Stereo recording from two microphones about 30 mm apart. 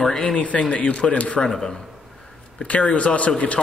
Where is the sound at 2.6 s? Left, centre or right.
Left.